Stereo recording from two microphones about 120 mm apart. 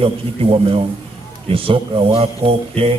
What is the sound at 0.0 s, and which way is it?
A man's voice, 50° right (ahead or behind).